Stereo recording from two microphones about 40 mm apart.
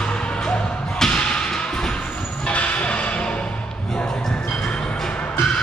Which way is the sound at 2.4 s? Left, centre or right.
Left.